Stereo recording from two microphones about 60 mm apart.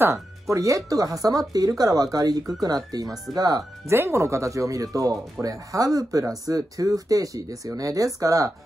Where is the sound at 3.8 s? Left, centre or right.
Right.